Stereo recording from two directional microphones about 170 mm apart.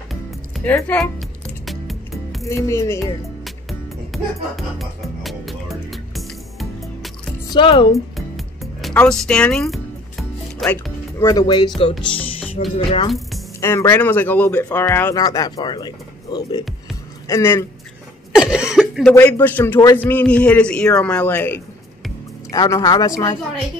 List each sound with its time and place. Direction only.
0.7 s speech: 10° left (ahead or behind)
1.7 s music: centre (ahead or behind)
2.4 s speech: 15° left (ahead or behind)
4.1 s music: centre (ahead or behind)
7.4 s speech: 30° left (ahead or behind)
8.9 s music: 5° left (ahead or behind)
11.1 s speech: 20° left (ahead or behind)
12.2 s music: 10° left (ahead or behind)
12.7 s speech: 35° left (ahead or behind)
13.6 s speech: 15° left (ahead or behind)
18.3 s speech: 5° right (ahead or behind)
19.1 s speech: 10° left (ahead or behind)
22.5 s speech: 20° left (ahead or behind)